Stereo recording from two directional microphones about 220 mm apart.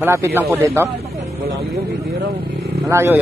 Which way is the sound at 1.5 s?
45° right (ahead or behind).